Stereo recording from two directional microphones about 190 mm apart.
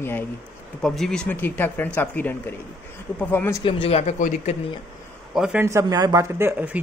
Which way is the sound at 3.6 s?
30° left (ahead or behind).